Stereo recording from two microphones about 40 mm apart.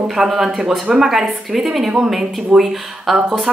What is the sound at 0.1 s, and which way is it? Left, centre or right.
Speech, centre.